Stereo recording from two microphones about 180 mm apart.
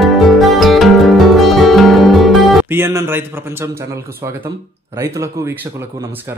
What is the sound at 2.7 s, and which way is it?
A man's voice, 15° right (ahead or behind).